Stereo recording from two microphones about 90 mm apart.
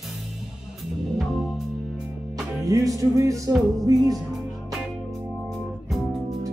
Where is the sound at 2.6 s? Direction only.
40° right (ahead or behind).